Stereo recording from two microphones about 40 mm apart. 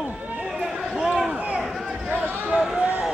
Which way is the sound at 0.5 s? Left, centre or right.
Centre.